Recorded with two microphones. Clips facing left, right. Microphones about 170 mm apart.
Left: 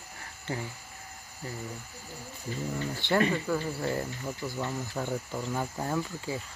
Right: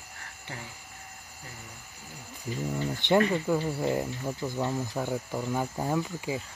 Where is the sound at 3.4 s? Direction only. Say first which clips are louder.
Right 3 dB; 15° right (ahead or behind).